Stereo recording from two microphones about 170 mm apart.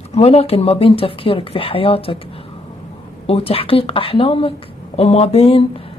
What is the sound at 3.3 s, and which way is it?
Speech, 35° left (ahead or behind).